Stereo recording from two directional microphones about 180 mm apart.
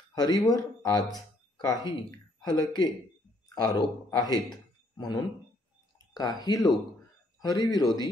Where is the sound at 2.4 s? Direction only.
25° left (ahead or behind).